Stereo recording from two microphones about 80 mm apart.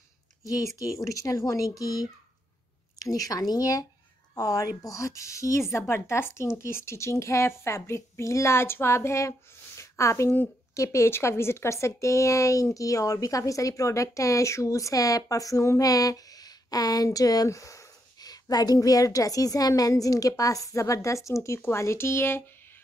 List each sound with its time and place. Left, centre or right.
0.5 s speech: left
9.8 s a sound: left
10.7 s speech: left